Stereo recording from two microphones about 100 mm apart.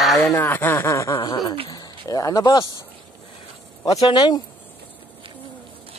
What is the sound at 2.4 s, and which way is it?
Speech, 50° left (ahead or behind).